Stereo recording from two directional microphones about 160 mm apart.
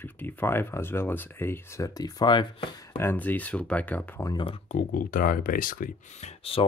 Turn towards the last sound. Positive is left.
turn(degrees=35)  # may be behind; listen again after turning